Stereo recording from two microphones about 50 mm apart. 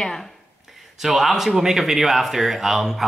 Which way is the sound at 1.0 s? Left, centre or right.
Centre.